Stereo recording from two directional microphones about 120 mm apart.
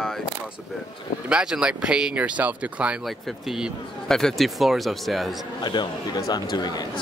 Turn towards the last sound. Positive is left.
turn(degrees=35)  # may be behind; listen again after turning